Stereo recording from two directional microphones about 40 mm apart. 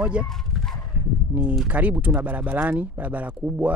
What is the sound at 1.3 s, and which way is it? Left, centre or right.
Speech, right.